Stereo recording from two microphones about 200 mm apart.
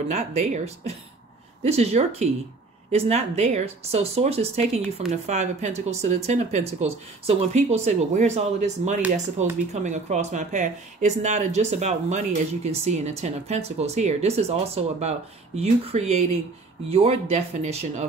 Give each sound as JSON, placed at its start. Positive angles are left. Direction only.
{"t": 0.1, "sound": "speech", "side_deg": -35}